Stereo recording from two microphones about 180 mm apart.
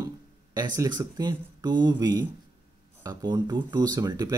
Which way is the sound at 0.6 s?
25° right (ahead or behind).